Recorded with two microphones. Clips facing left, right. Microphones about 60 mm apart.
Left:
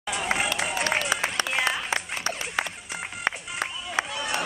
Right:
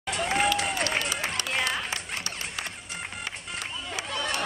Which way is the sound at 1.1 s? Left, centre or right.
Left.